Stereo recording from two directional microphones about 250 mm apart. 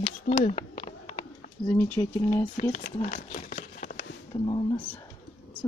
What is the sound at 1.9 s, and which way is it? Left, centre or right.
Speech, centre.